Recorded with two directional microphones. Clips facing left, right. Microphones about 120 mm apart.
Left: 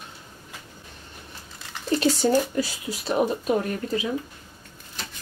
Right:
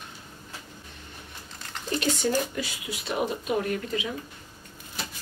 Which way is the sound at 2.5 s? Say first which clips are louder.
Left 6 dB; 40° left (ahead or behind).